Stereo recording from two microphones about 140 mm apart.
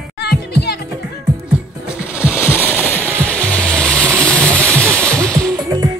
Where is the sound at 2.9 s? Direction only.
10° left (ahead or behind).